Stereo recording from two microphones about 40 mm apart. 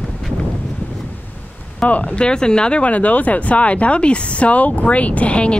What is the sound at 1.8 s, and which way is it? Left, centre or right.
Speech, left.